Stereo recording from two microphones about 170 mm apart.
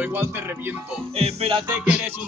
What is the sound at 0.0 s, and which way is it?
Music, 10° right (ahead or behind).